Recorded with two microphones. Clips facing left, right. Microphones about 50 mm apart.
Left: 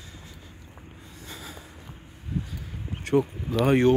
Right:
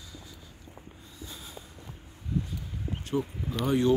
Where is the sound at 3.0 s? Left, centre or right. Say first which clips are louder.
Left 8 dB; left.